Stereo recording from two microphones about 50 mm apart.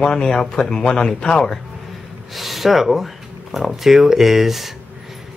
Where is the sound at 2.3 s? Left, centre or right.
Centre.